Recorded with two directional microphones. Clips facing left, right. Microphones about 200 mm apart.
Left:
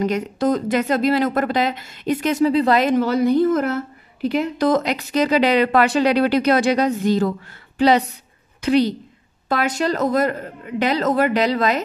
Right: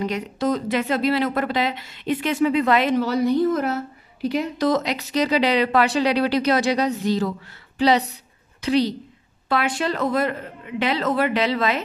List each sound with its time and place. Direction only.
0.0 s speech: 45° left (ahead or behind)
8.5 s a woman's voice: 50° left (ahead or behind)